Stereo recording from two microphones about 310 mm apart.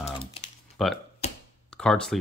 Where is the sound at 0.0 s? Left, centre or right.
Centre.